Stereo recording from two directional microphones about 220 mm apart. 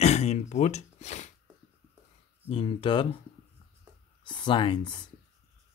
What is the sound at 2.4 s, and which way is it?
Speech, 25° left (ahead or behind).